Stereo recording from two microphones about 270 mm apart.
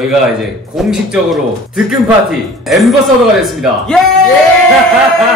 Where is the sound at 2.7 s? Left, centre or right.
Centre.